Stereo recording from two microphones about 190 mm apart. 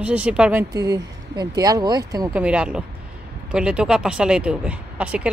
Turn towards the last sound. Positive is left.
turn(degrees=-5)  # may be behind; listen again after turning